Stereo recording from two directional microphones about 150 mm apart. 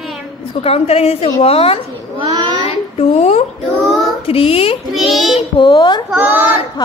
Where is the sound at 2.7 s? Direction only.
40° left (ahead or behind).